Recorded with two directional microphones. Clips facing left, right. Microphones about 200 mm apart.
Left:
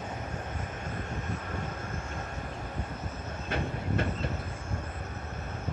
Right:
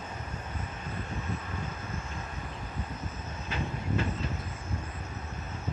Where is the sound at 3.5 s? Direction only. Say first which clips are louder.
Left 2 dB; 55° left (ahead or behind).